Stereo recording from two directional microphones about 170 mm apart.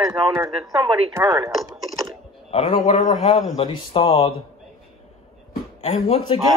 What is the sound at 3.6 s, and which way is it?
Speech, 30° left (ahead or behind).